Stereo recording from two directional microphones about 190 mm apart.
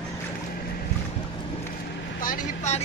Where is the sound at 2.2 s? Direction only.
50° left (ahead or behind).